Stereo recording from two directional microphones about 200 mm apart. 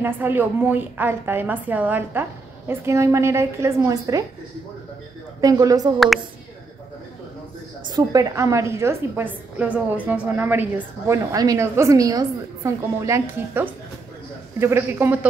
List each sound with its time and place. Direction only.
0.0 s a woman's voice: 10° right (ahead or behind)
5.4 s a woman's voice: 15° right (ahead or behind)
7.9 s a woman's voice: 20° right (ahead or behind)